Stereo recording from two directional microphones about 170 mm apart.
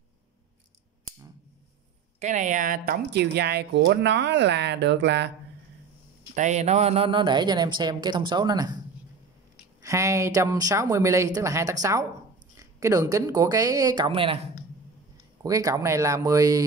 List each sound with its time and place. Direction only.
2.1 s speech: 45° right (ahead or behind); by 5.3 s 90° right
6.3 s a woman's voice: 45° right (ahead or behind); by 8.7 s 25° right (ahead or behind)
9.8 s a woman's voice: 15° right (ahead or behind)
15.4 s a woman's voice: 20° right (ahead or behind)